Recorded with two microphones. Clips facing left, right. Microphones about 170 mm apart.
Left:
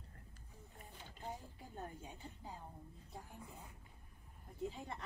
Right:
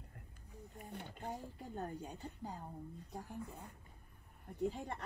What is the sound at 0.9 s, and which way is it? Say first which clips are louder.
Speech: right 4 dB; 65° right (ahead or behind).